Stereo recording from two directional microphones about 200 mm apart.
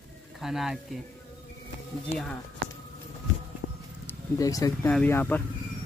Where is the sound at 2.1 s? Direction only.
30° left (ahead or behind).